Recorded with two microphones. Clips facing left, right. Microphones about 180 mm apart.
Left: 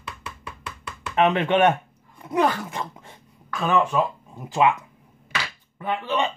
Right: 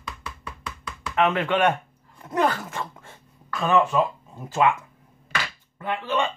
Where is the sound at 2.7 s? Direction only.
15° left (ahead or behind).